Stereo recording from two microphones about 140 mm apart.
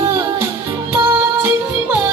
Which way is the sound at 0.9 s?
15° right (ahead or behind).